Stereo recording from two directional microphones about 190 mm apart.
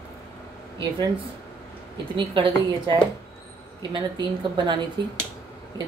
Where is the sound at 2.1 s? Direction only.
25° right (ahead or behind).